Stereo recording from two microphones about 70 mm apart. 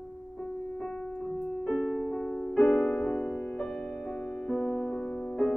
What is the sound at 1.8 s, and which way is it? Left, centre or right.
Music, centre.